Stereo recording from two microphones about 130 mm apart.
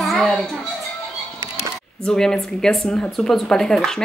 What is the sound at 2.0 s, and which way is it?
Speech, 5° left (ahead or behind).